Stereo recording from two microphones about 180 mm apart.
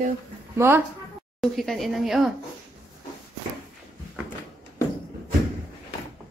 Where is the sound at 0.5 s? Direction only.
15° right (ahead or behind).